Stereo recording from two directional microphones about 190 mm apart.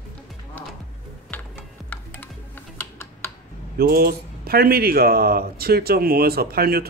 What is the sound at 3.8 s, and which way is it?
Speech, 55° right (ahead or behind).